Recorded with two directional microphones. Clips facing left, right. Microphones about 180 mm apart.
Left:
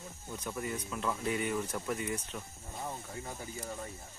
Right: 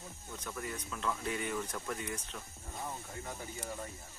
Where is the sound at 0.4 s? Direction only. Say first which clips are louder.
Left 4 dB; 10° left (ahead or behind).